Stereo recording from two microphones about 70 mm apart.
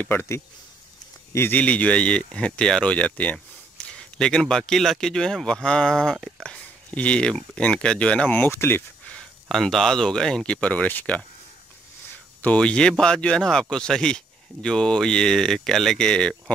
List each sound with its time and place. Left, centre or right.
0.0 s speech: left
1.5 s speech: centre
8.5 s speech: left
9.5 s speech: centre; by 11.2 s left
12.4 s speech: centre